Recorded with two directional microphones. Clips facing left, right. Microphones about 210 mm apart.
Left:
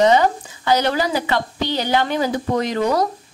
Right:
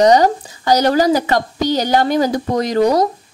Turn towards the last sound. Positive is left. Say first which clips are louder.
# right 5 dB
turn(degrees=-40)  # may be behind; listen again after turning